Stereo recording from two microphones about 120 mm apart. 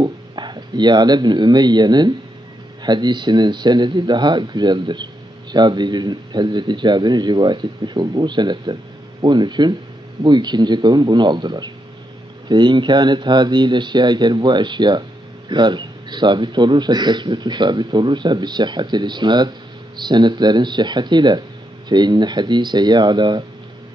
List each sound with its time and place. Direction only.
0.0 s speech: 35° right (ahead or behind)